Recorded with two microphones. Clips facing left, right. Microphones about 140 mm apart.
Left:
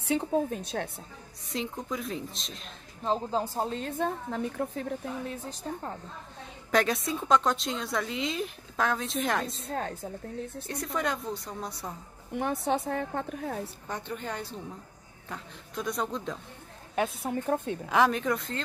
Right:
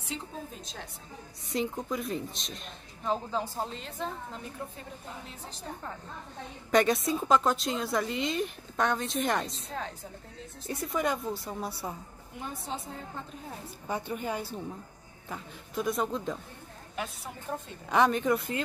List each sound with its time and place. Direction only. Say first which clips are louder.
0.0 s a woman's voice: left 12 dB; 65° left (ahead or behind)
1.5 s a woman's voice: right 2 dB; centre (ahead or behind)
3.0 s speech: left 2 dB; 30° left (ahead or behind)
3.8 s a woman's voice: left 6 dB; 60° left (ahead or behind)
6.7 s a woman's voice: right 2 dB; centre (ahead or behind)
9.7 s a woman's voice: left 4 dB; 50° left (ahead or behind)
10.7 s a woman's voice: right 2 dB; centre (ahead or behind)
12.4 s a woman's voice: left 10 dB; 70° left (ahead or behind)
13.8 s a woman's voice: right 7 dB; 10° right (ahead or behind)
16.9 s a woman's voice: left 9 dB; 55° left (ahead or behind)
17.8 s a woman's voice: right 1 dB; centre (ahead or behind)